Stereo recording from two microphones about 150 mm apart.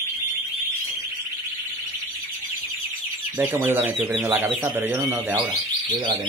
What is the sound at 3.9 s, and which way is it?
Speech, centre (ahead or behind).